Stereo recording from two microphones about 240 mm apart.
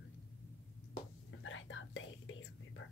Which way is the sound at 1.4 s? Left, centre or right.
Left.